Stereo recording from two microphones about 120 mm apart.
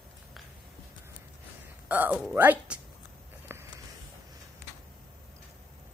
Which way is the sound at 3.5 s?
20° right (ahead or behind).